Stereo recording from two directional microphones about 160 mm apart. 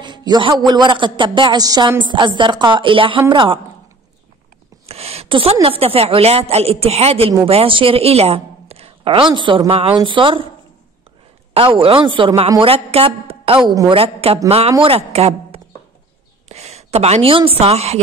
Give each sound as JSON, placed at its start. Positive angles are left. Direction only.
{"t": 0.0, "sound": "a man's voice", "side_deg": -25}
{"t": 4.8, "sound": "a woman's voice", "side_deg": -40}
{"t": 11.5, "sound": "a woman's voice", "side_deg": -35}